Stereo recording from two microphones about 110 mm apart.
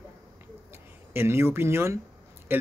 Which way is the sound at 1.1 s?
20° right (ahead or behind).